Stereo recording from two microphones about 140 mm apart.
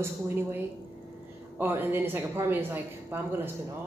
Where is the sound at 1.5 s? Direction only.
15° right (ahead or behind).